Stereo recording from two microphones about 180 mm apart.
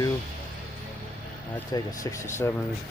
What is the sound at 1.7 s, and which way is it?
Speech, 20° left (ahead or behind).